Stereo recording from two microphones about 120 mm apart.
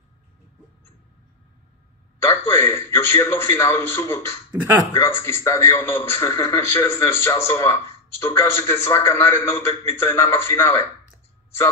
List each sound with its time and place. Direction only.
2.2 s a man's voice: 20° left (ahead or behind)